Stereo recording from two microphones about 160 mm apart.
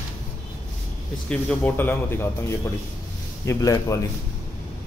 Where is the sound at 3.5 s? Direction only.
20° left (ahead or behind).